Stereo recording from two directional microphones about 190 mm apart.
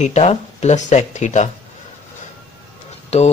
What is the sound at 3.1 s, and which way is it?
Speech, 35° left (ahead or behind).